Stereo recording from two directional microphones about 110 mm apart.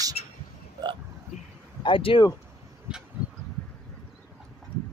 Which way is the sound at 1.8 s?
50° left (ahead or behind).